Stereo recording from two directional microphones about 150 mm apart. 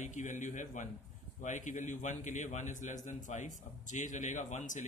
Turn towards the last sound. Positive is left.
turn(degrees=55)  # may be behind; listen again after turning